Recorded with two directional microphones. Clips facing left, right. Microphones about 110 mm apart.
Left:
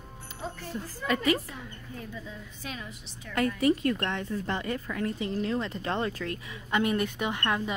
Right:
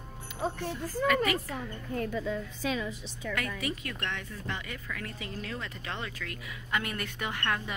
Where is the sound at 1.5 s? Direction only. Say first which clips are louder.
Right 6 dB; 70° right (ahead or behind).